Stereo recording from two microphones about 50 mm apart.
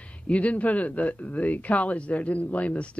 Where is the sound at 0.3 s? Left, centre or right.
Left.